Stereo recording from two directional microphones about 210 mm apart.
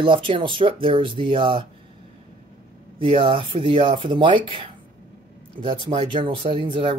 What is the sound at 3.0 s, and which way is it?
Speech, 25° right (ahead or behind).